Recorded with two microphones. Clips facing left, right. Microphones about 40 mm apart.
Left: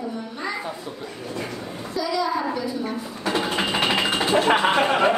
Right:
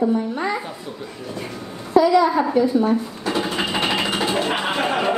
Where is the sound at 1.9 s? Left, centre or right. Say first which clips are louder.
Right 9 dB; right.